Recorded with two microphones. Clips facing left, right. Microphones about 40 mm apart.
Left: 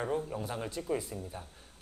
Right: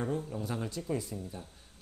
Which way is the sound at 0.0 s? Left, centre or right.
Left.